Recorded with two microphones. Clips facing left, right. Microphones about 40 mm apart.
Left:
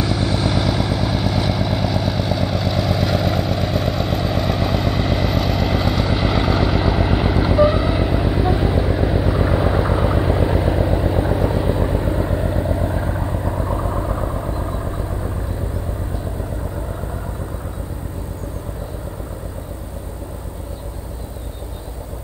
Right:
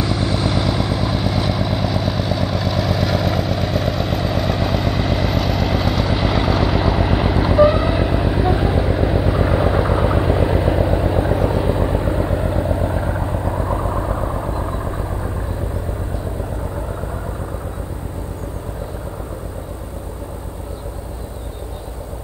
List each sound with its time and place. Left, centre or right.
0.0 s vehicle: centre
14.7 s vehicle: right